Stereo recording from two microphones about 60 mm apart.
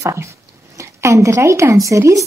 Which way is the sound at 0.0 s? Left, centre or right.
Right.